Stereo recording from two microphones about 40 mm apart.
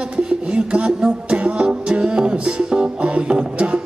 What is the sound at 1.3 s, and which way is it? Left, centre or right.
Music, right.